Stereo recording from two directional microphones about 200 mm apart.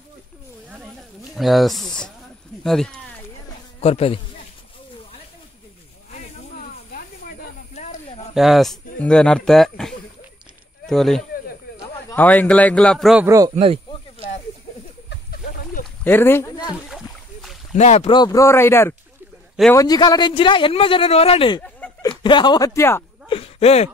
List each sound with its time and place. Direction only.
1.3 s speech: centre (ahead or behind)
3.8 s speech: 30° left (ahead or behind)
6.9 s snake: 40° left (ahead or behind)
8.4 s speech: centre (ahead or behind)
16.0 s speech: 10° left (ahead or behind)
16.9 s splash: centre (ahead or behind)
17.7 s speech: 35° left (ahead or behind)
18.1 s speech: 20° left (ahead or behind)
21.6 s a sound: 5° left (ahead or behind)
22.0 s speech: 20° left (ahead or behind)
23.2 s a sound: 25° left (ahead or behind)